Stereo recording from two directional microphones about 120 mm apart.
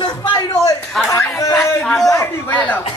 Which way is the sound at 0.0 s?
35° left (ahead or behind).